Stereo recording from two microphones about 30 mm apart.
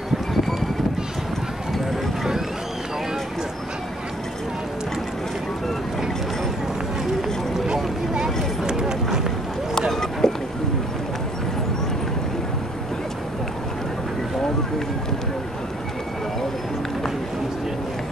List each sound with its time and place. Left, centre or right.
7.6 s vehicle: right
8.6 s run: right
10.2 s boat: centre